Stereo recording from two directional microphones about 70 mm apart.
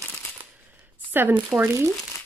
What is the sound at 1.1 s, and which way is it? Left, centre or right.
Speech, right.